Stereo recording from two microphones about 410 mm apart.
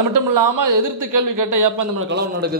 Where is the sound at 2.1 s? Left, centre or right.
Right.